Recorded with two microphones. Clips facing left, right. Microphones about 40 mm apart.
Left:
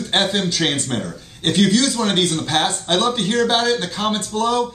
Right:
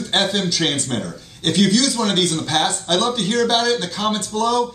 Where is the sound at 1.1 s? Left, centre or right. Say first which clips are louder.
Left 1 dB; centre.